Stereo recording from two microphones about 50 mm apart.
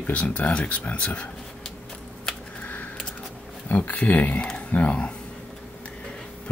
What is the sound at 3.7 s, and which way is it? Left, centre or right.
Speech, left.